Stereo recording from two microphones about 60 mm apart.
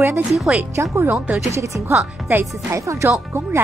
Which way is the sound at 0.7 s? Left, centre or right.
Right.